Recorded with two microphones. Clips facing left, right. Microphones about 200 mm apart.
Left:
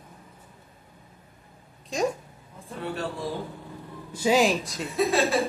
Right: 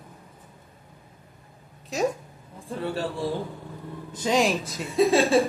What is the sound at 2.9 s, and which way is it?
Speech, 30° right (ahead or behind).